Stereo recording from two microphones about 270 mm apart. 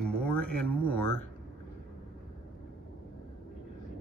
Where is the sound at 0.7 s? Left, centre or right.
Right.